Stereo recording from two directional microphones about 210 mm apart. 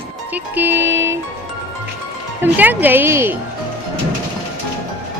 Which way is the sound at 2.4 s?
10° right (ahead or behind).